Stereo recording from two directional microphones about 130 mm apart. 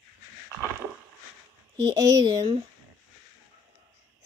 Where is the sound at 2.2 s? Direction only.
45° right (ahead or behind).